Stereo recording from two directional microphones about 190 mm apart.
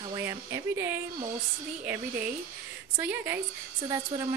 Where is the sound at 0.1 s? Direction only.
15° right (ahead or behind).